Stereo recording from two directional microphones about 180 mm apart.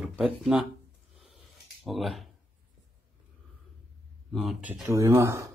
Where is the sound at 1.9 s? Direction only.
Centre (ahead or behind).